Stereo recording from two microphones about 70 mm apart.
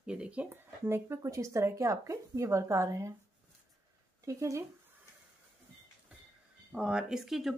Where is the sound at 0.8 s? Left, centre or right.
Right.